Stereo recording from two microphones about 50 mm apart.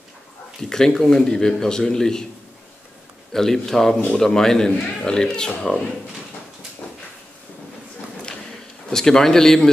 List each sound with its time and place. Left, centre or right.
0.6 s a man's voice: centre
3.3 s a man's voice: centre
6.8 s a sound: left
8.9 s a man's voice: centre